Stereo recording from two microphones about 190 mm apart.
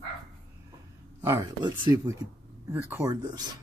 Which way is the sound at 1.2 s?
15° right (ahead or behind).